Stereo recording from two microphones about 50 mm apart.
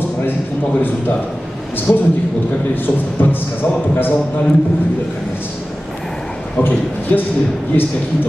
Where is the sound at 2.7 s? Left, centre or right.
Left.